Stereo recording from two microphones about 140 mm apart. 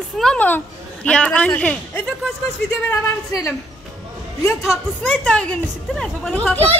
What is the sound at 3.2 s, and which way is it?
Speech, 25° left (ahead or behind).